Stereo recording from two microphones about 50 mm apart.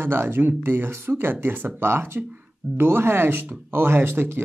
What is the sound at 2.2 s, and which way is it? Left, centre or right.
Speech, right.